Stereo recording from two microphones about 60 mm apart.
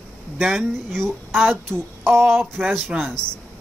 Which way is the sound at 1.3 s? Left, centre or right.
Right.